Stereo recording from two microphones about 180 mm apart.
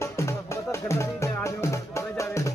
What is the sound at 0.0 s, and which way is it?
Music, 15° left (ahead or behind).